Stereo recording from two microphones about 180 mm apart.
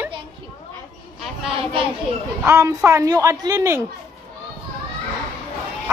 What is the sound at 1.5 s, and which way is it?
Speech, 30° right (ahead or behind).